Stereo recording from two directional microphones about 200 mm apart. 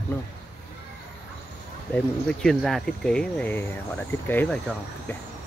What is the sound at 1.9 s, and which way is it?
Speech, 5° left (ahead or behind).